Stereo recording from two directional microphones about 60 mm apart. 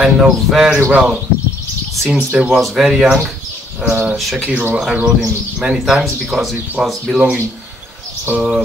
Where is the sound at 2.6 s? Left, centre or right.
Centre.